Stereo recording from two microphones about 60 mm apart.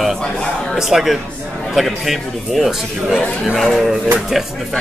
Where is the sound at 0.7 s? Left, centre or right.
Centre.